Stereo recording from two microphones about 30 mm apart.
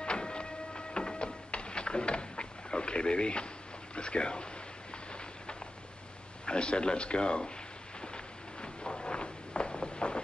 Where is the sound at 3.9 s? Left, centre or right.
Left.